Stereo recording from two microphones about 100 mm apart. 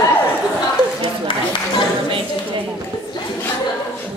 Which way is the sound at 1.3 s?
60° left (ahead or behind).